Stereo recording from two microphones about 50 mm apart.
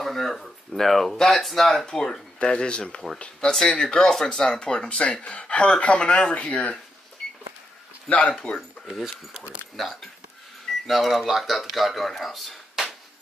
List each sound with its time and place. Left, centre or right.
0.0 s speech: centre; by 6.8 s left
8.1 s speech: left
9.4 s speech: right
10.9 s speech: centre